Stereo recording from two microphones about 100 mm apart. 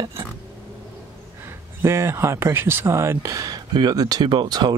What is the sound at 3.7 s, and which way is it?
Speech, 45° right (ahead or behind).